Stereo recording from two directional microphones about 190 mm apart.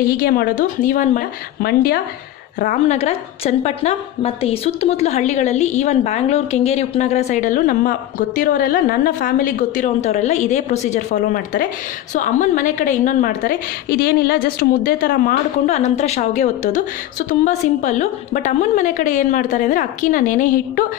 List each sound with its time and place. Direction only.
0.0 s a woman's voice: 50° left (ahead or behind)
3.0 s a woman's voice: 35° left (ahead or behind)